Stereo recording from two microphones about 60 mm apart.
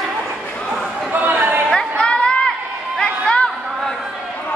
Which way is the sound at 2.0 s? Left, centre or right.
Centre.